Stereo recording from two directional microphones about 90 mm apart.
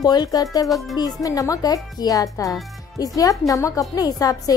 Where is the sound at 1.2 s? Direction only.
40° left (ahead or behind).